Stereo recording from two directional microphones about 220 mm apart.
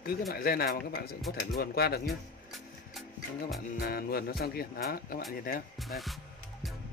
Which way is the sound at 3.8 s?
45° left (ahead or behind).